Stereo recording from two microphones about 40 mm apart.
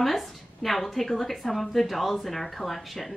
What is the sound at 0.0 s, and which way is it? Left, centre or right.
A woman's voice, centre.